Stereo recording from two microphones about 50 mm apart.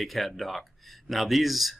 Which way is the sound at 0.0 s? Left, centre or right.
Centre.